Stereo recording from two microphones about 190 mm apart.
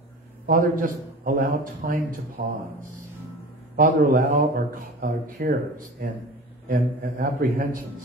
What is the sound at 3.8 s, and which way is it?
A man's voice, 45° right (ahead or behind).